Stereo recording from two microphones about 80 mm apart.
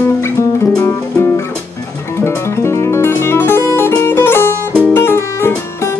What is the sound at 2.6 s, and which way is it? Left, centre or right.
Music, left.